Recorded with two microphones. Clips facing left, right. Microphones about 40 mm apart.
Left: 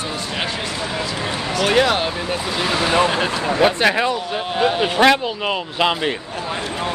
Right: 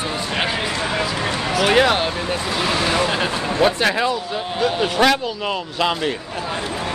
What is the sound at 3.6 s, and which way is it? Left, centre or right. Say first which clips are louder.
Speech: left 1 dB; left.